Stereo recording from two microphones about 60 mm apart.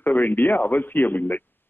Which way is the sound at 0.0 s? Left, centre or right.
Left.